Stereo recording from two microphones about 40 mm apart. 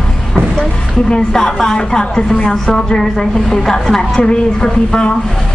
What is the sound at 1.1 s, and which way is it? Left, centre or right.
A woman's voice, centre.